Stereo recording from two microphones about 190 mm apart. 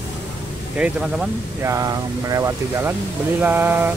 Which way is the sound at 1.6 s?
20° right (ahead or behind).